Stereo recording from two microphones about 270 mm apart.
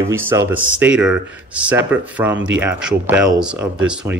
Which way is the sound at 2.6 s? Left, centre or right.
Centre.